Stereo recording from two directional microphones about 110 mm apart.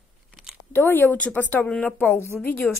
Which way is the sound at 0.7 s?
15° left (ahead or behind).